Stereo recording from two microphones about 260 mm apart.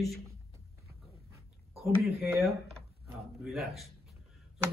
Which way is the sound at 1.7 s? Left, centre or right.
Centre.